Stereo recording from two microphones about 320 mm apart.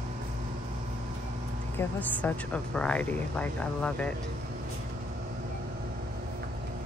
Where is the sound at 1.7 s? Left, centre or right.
Centre.